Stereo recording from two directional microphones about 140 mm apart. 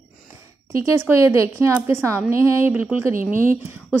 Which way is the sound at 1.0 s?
20° right (ahead or behind).